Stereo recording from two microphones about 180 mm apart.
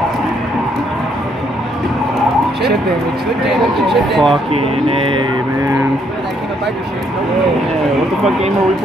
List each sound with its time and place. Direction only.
3.4 s speech: centre (ahead or behind)
4.5 s speech: 30° right (ahead or behind)